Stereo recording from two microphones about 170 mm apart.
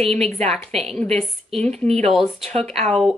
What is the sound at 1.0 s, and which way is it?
Speech, 35° right (ahead or behind).